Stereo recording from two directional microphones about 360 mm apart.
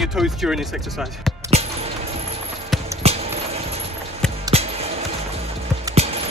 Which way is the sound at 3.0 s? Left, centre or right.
Centre.